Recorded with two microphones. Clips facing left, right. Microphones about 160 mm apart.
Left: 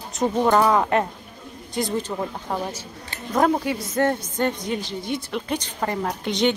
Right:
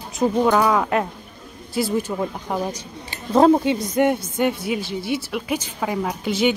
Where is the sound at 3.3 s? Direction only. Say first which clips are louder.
Right 6 dB; 25° right (ahead or behind).